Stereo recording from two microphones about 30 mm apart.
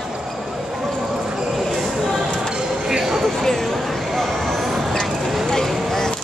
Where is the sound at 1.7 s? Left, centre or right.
Centre.